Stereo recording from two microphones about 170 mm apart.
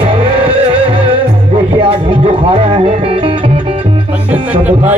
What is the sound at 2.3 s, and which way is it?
Music, 30° right (ahead or behind).